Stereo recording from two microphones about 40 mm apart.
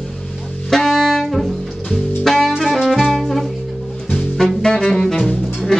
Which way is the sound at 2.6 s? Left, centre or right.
Centre.